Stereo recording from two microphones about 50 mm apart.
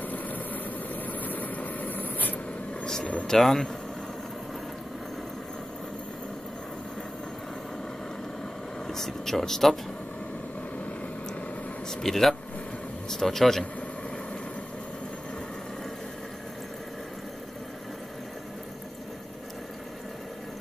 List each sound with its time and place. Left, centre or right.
0.0 s vehicle: left
2.8 s vehicle: centre
3.3 s speech: centre
8.8 s speech: centre
12.0 s speech: centre